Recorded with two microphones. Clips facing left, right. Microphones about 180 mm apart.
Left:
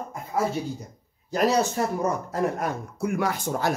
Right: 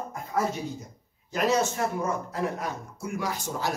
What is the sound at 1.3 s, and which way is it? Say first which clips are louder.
A man's voice: left 3 dB; 35° left (ahead or behind).